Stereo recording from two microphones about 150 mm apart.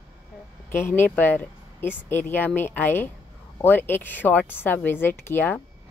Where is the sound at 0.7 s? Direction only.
15° left (ahead or behind).